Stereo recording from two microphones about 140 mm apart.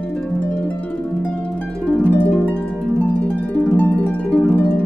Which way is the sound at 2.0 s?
10° left (ahead or behind).